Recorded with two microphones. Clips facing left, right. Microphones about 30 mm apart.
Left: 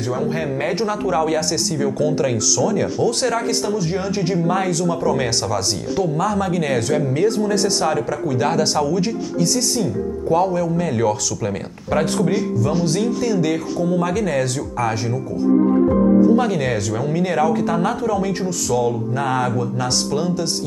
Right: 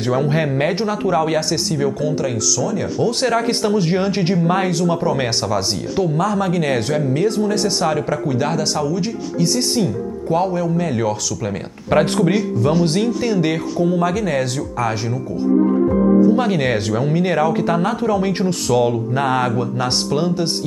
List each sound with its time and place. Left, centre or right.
0.1 s speech: right
0.7 s speech: right
2.0 s speech: centre
3.0 s speech: centre
3.4 s speech: right; by 8.4 s centre
8.4 s speech: centre
9.4 s speech: centre
10.8 s speech: centre
11.9 s speech: right
13.7 s speech: centre
16.3 s speech: right